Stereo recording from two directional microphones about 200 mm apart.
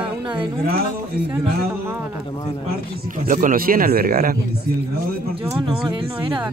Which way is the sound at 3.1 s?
40° right (ahead or behind).